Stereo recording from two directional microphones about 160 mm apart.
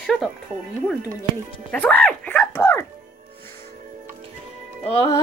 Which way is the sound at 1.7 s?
10° left (ahead or behind).